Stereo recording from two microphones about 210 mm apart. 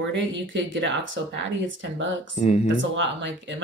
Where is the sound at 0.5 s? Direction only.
60° right (ahead or behind).